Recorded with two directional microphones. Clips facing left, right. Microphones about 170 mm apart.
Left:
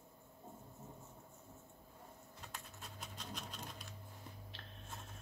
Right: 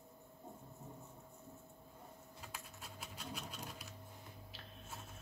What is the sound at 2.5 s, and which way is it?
Scratch, 5° right (ahead or behind).